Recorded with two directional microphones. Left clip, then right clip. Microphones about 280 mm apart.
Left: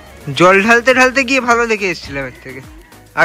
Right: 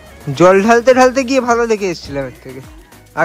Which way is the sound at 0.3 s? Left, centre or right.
Centre.